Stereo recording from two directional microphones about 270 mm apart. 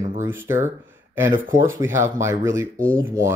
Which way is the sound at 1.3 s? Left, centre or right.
Right.